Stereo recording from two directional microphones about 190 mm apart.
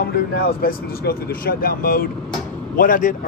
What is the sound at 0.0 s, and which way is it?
Speech, 55° left (ahead or behind).